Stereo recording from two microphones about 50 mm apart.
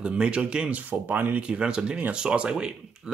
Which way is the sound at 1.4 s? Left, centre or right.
Right.